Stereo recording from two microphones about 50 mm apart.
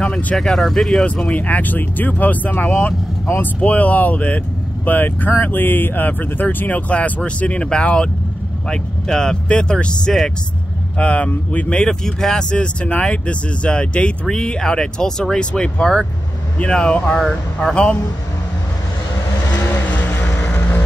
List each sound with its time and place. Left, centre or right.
0.4 s speech: centre
1.0 s speech: left
11.8 s speech: centre
19.7 s vehicle: left